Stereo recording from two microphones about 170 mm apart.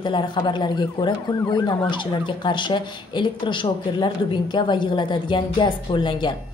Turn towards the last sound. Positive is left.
turn(degrees=25)  # may be behind; listen again after turning